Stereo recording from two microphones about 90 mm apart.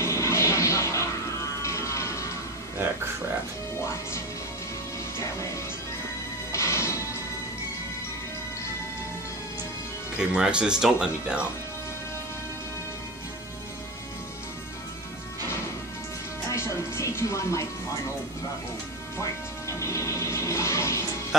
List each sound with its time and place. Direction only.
0.0 s music: 30° left (ahead or behind)
1.6 s a sound: 35° left (ahead or behind)
6.5 s music: 30° left (ahead or behind)
10.1 s speech: 10° right (ahead or behind)
16.5 s music: 30° left (ahead or behind)
19.8 s music: 35° left (ahead or behind)